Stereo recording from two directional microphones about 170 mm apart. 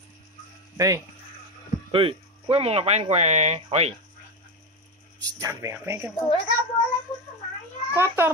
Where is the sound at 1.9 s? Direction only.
30° right (ahead or behind).